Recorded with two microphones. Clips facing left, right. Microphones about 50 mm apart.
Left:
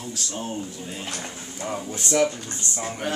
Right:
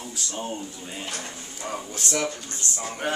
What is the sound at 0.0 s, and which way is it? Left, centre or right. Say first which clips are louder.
A man's voice: left 1 dB; centre.